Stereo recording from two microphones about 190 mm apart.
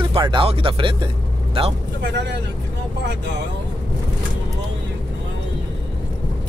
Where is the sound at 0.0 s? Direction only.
25° right (ahead or behind).